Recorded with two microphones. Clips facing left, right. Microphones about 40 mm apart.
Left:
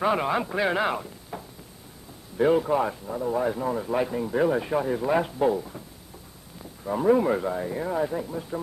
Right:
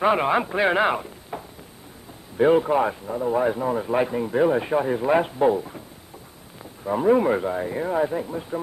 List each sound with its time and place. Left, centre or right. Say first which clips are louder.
0.0 s a man's voice: right 4 dB; right
6.8 s a man's voice: right 2 dB; centre